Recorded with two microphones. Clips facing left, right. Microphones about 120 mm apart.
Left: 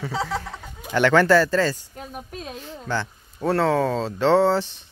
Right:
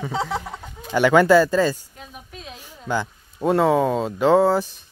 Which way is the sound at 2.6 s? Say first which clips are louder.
Right 3 dB; 10° right (ahead or behind).